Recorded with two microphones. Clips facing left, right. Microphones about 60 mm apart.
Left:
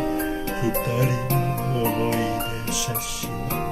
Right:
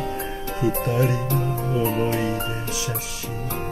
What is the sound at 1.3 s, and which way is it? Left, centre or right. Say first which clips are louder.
Music: even; left.